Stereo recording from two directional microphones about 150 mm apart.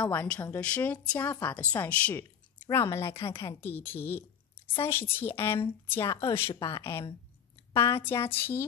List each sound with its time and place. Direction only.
0.0 s a woman's voice: 10° left (ahead or behind)